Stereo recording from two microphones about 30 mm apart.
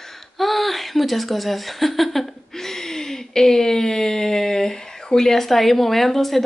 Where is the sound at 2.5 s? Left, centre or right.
Centre.